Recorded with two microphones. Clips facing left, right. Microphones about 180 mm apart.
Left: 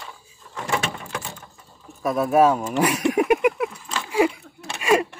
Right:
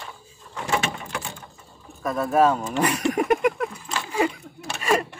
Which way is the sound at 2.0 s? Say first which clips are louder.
Left 2 dB; 10° left (ahead or behind).